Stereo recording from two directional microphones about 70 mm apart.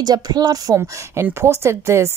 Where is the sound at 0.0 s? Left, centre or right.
Right.